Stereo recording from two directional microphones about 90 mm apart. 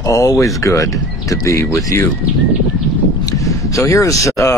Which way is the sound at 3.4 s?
35° left (ahead or behind).